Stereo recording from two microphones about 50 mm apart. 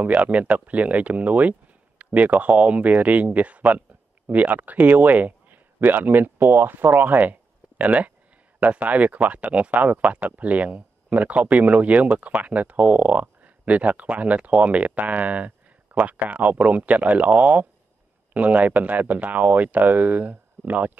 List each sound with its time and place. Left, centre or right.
0.0 s speech: right